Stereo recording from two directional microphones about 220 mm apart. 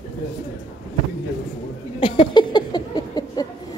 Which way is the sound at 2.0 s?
20° left (ahead or behind).